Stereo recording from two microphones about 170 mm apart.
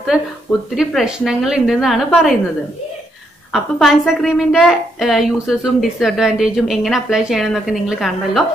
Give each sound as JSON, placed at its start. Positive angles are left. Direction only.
{"t": 0.7, "sound": "a woman's voice", "side_deg": 0}
{"t": 2.0, "sound": "a woman's voice", "side_deg": 10}
{"t": 3.5, "sound": "a woman's voice", "side_deg": 0}